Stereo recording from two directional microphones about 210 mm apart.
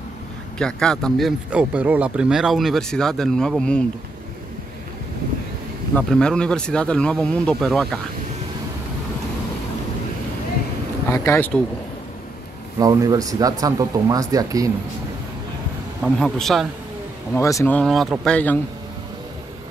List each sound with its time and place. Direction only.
0.6 s speech: 5° left (ahead or behind)
5.9 s speech: 5° left (ahead or behind)
11.1 s speech: 10° left (ahead or behind)
12.7 s speech: 15° right (ahead or behind)
16.0 s speech: centre (ahead or behind)
17.3 s speech: 15° left (ahead or behind)